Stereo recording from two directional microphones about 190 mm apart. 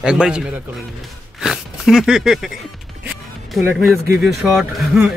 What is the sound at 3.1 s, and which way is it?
Music, centre (ahead or behind).